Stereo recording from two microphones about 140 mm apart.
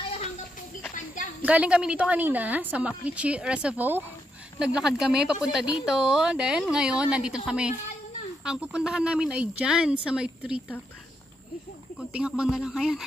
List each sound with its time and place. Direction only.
0.9 s a sound: 65° left (ahead or behind)
1.4 s a woman's voice: 10° right (ahead or behind)
12.0 s speech: 5° right (ahead or behind)